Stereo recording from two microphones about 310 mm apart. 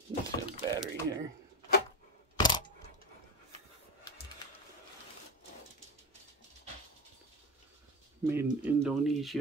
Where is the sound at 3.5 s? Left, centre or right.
Right.